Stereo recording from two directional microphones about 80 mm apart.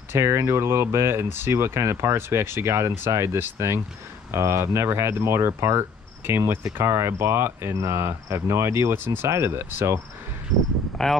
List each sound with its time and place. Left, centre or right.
0.1 s speech: right
11.0 s speech: centre